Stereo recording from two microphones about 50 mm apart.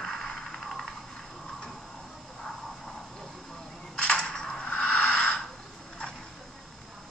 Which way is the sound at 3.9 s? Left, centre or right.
Centre.